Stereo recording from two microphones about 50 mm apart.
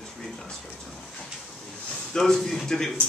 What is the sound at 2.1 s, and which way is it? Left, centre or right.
Speech, centre.